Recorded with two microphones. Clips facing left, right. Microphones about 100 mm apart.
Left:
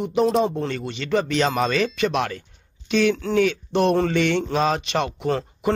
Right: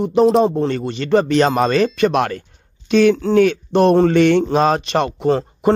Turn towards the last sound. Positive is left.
turn(degrees=-35)  # may be behind; listen again after turning